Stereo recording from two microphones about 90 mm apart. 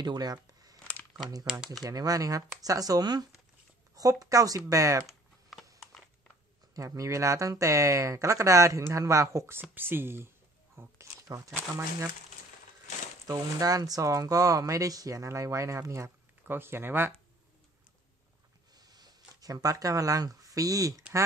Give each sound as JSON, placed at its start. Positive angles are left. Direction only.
{"t": 0.0, "sound": "speech", "side_deg": -50}
{"t": 1.9, "sound": "speech", "side_deg": -40}
{"t": 5.0, "sound": "typing", "side_deg": 0}
{"t": 6.7, "sound": "speech", "side_deg": -40}
{"t": 9.8, "sound": "speech", "side_deg": -25}
{"t": 10.8, "sound": "a sound", "side_deg": -35}
{"t": 13.3, "sound": "speech", "side_deg": -40}
{"t": 18.8, "sound": "a sound", "side_deg": -50}